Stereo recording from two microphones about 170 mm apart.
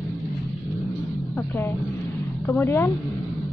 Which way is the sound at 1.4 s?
15° left (ahead or behind).